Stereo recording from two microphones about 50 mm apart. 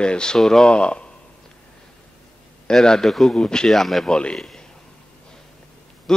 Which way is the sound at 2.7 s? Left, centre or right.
Centre.